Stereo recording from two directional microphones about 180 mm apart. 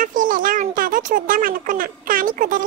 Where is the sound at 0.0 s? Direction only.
50° right (ahead or behind).